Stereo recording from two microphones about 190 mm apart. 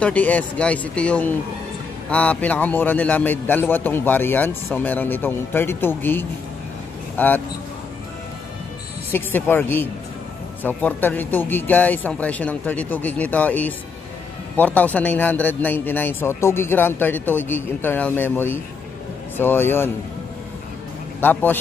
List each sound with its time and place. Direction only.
0.0 s a man's voice: 10° left (ahead or behind)
9.1 s a man's voice: 10° left (ahead or behind)
21.2 s a man's voice: 10° left (ahead or behind)